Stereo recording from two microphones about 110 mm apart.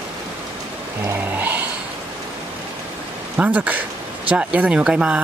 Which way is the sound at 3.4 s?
15° right (ahead or behind).